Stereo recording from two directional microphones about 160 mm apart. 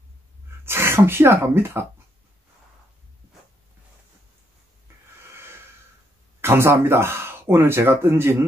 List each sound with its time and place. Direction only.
0.7 s speech: 15° right (ahead or behind)
6.4 s speech: 15° right (ahead or behind)